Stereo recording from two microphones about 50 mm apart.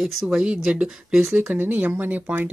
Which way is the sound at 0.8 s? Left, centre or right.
Centre.